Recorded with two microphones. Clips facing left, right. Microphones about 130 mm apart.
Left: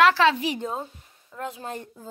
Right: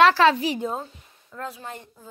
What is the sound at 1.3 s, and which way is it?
Speech, 20° left (ahead or behind).